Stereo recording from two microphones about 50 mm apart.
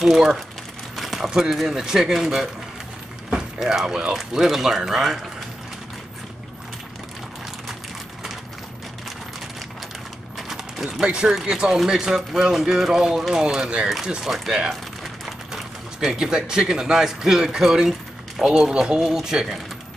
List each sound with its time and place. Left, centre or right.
0.0 s speech: centre
0.9 s crumpling: centre
1.4 s speech: centre
10.3 s a sound: centre
10.9 s speech: centre
13.8 s speech: centre
15.2 s a sound: centre
16.1 s speech: centre